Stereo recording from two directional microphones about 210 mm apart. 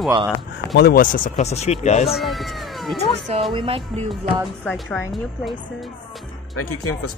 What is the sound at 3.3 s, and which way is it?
Speech, 25° right (ahead or behind).